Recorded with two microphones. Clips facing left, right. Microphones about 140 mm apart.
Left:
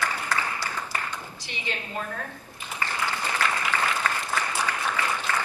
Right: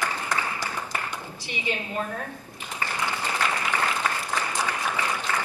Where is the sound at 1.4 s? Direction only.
15° right (ahead or behind).